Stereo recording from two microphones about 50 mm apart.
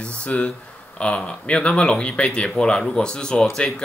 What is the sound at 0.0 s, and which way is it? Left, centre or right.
Speech, left.